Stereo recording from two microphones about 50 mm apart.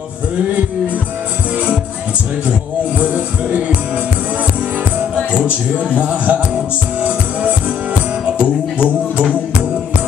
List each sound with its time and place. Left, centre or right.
3.0 s music: right
5.9 s music: right
8.4 s music: right